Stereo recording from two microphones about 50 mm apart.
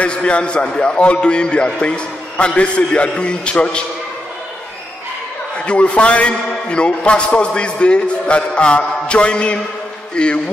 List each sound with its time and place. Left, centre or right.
0.0 s a man's voice: left
5.7 s a man's voice: left